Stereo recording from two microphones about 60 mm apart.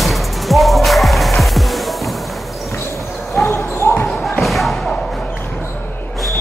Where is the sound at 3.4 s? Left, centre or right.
Left.